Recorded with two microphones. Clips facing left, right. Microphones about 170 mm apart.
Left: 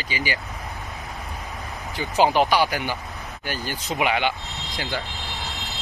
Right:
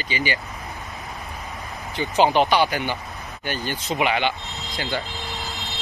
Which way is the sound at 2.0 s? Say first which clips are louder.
Right 1 dB; 5° left (ahead or behind).